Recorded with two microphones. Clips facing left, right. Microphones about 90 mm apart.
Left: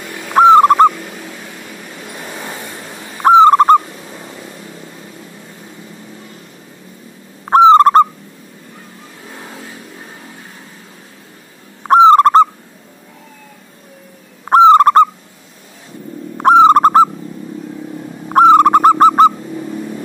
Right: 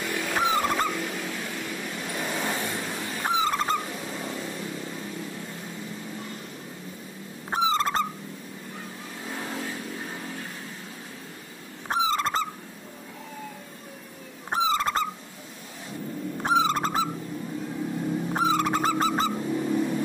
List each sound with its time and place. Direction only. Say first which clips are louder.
0.4 s bird: left 19 dB; 65° left (ahead or behind)
2.1 s vehicle: even; 5° left (ahead or behind)
3.3 s owl: left 19 dB; 60° left (ahead or behind)
7.4 s owl: left 18 dB; 65° left (ahead or behind)
9.3 s vehicle: even; 10° left (ahead or behind)
11.8 s owl: left 19 dB; 65° left (ahead or behind)
14.4 s turkey: left 19 dB; 65° left (ahead or behind)
16.3 s bird: left 16 dB; 60° left (ahead or behind)
18.3 s dog: left 19 dB; 65° left (ahead or behind)